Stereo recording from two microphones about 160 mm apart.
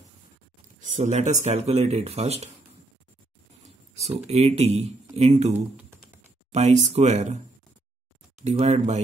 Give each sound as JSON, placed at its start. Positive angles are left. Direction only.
{"t": 0.7, "sound": "speech", "side_deg": -50}
{"t": 4.0, "sound": "speech", "side_deg": -40}
{"t": 5.5, "sound": "speech", "side_deg": -10}
{"t": 6.5, "sound": "speech", "side_deg": -45}
{"t": 8.4, "sound": "speech", "side_deg": -40}